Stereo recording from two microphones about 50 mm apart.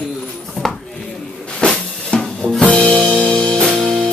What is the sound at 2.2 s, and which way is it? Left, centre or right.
Music, centre.